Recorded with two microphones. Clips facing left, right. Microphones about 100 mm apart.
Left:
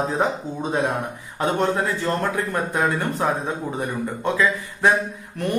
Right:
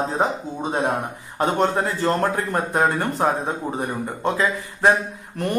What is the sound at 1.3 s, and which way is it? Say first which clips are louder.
Speech: right 1 dB; 35° right (ahead or behind).